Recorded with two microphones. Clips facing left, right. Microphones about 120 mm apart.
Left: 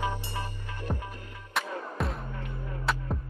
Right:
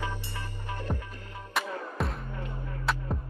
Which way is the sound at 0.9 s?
10° left (ahead or behind).